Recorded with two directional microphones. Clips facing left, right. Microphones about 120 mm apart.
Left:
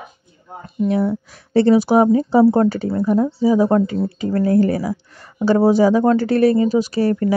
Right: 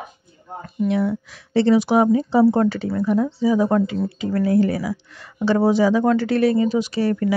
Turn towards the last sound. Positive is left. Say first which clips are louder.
# left 3 dB
turn(degrees=40)  # may be behind; listen again after turning